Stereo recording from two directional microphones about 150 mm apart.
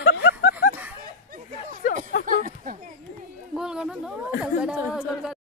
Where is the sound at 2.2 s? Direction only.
60° right (ahead or behind).